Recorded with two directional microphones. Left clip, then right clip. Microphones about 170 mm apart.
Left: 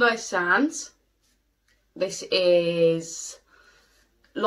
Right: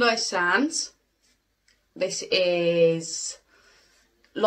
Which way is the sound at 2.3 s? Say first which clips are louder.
Left 2 dB; 20° right (ahead or behind).